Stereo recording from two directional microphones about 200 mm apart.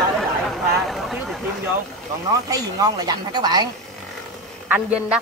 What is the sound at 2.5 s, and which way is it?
Speech, 20° right (ahead or behind).